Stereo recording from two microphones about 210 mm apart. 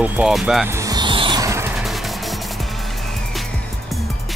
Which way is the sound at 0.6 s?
15° right (ahead or behind).